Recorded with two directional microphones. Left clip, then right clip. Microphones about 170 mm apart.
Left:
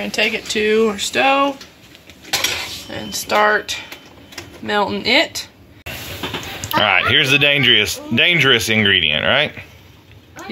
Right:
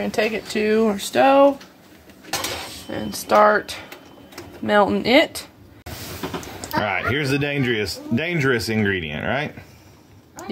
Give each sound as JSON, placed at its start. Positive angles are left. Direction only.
{"t": 0.0, "sound": "speech", "side_deg": -55}
{"t": 2.9, "sound": "speech", "side_deg": -70}
{"t": 6.7, "sound": "speech", "side_deg": -10}